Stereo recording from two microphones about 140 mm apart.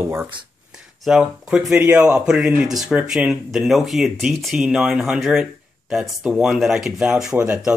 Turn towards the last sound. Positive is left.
turn(degrees=-10)  # may be behind; listen again after turning